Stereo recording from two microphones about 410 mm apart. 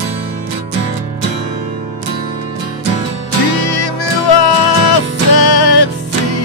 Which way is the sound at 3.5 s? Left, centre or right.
Left.